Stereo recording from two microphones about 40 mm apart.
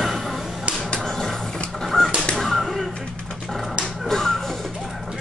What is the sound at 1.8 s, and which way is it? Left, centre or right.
Fowl, centre.